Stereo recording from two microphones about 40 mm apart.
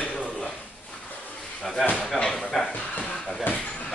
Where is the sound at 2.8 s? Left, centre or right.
Left.